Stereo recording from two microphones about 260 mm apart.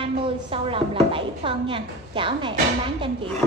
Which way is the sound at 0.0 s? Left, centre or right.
Centre.